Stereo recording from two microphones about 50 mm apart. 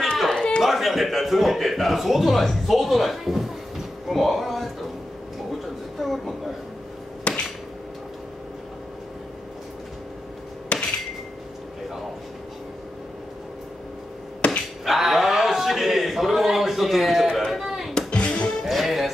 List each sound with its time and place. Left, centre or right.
0.3 s a sound: centre
0.7 s a man's voice: centre
5.9 s a sound: centre
7.3 s hammer: left
10.7 s hammer: left
14.4 s chop: left
14.9 s a sound: centre
17.5 s chop: centre
17.9 s music: left
18.6 s music: centre